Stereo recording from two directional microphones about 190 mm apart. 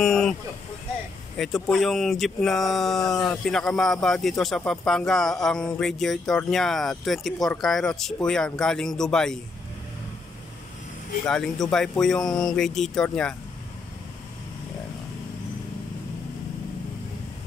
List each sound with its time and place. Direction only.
0.0 s vehicle: centre (ahead or behind)
1.4 s speech: centre (ahead or behind)
11.2 s speech: centre (ahead or behind)